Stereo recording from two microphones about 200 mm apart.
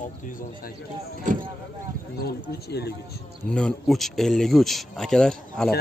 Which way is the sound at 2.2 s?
55° left (ahead or behind).